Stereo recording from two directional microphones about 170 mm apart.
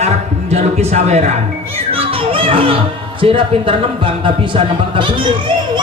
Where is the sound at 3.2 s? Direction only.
30° right (ahead or behind).